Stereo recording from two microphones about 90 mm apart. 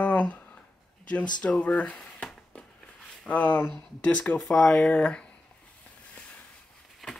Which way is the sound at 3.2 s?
15° left (ahead or behind).